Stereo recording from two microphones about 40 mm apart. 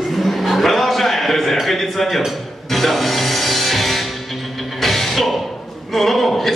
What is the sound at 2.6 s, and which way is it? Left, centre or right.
Music, centre.